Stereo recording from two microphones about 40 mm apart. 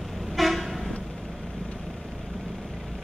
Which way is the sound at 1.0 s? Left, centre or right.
Centre.